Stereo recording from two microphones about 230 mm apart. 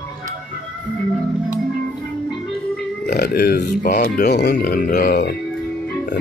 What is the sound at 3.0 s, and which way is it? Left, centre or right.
Speech, left.